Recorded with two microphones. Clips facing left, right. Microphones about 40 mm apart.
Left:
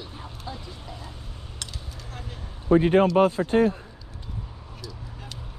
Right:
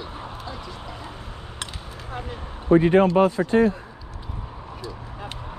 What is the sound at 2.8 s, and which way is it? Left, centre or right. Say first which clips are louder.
Speech: right 2 dB; right.